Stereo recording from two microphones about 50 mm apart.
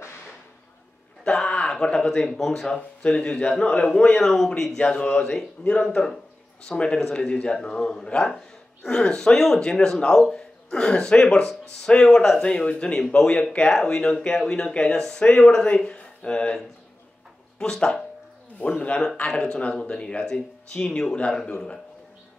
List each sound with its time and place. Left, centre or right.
1.5 s speech: centre
2.7 s a man's voice: left
12.4 s speech: left
13.0 s a man's voice: centre
13.3 s a man's voice: left
15.2 s a man's voice: left
21.5 s speech: left